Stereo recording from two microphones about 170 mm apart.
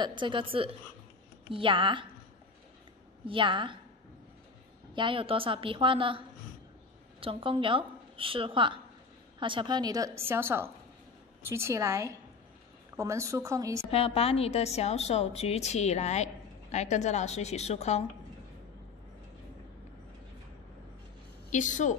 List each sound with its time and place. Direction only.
0.0 s a woman's voice: 30° right (ahead or behind)
3.3 s a woman's voice: 30° right (ahead or behind)
4.9 s a woman's voice: 30° right (ahead or behind)
13.8 s a woman's voice: 35° left (ahead or behind)
21.5 s a woman's voice: 45° left (ahead or behind)